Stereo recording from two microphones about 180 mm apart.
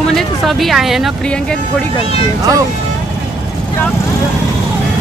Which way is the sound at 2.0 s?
30° left (ahead or behind).